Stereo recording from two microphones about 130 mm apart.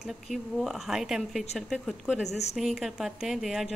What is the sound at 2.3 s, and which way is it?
Speech, 55° left (ahead or behind).